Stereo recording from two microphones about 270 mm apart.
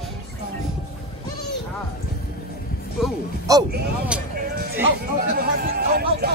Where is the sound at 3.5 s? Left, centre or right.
Centre.